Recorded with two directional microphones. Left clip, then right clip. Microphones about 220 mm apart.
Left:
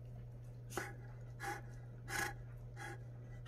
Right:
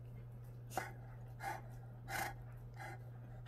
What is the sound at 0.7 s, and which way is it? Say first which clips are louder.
Dog: right 1 dB; 10° right (ahead or behind).